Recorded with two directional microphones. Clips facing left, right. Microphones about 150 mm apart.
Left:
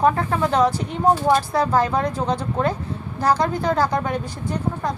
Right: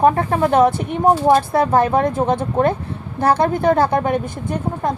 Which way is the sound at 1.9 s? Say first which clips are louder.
Right 5 dB; 50° right (ahead or behind).